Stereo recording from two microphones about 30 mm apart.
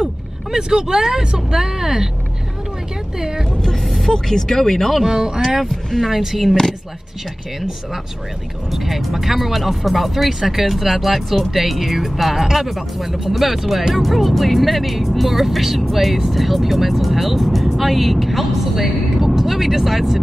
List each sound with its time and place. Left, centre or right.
0.7 s speech: right
3.2 s speech: centre
3.8 s speech: centre
5.0 s speech: centre
8.7 s speech: centre